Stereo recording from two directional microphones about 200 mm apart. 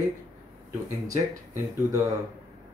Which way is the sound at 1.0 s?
15° right (ahead or behind).